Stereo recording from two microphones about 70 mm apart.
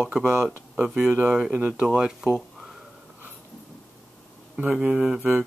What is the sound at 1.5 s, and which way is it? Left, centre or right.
Speech, right.